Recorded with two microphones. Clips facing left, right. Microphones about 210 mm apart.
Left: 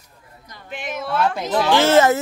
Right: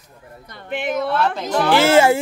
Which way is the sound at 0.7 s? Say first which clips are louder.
Right 7 dB; 60° right (ahead or behind).